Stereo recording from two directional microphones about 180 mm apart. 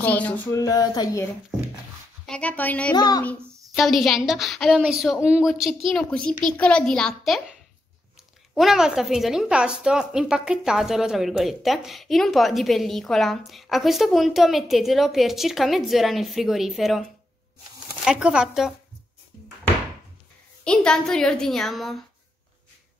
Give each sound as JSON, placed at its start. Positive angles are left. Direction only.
{"t": 0.0, "sound": "speech", "side_deg": 10}
{"t": 2.2, "sound": "speech", "side_deg": 5}
{"t": 2.9, "sound": "speech", "side_deg": 20}
{"t": 3.3, "sound": "a sound", "side_deg": -15}
{"t": 3.7, "sound": "a woman's voice", "side_deg": 0}
{"t": 8.5, "sound": "a woman's voice", "side_deg": 0}
{"t": 18.0, "sound": "a woman's voice", "side_deg": -5}
{"t": 20.6, "sound": "a woman's voice", "side_deg": 5}